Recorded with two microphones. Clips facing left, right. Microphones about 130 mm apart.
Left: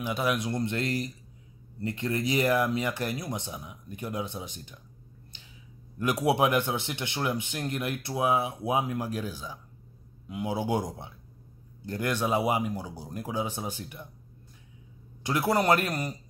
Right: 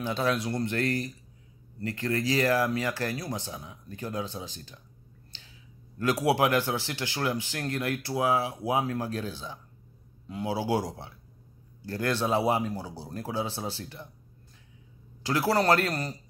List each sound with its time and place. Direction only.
0.0 s a man's voice: 15° left (ahead or behind)
5.9 s a man's voice: 20° left (ahead or behind)
15.2 s a man's voice: 20° left (ahead or behind)